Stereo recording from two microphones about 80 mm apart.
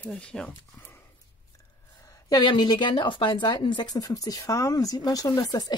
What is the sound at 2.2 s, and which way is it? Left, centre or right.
A woman's voice, left.